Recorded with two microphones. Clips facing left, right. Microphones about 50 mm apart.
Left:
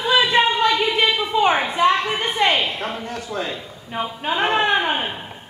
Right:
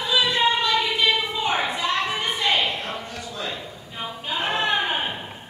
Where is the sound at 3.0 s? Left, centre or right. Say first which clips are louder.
Left 5 dB; left.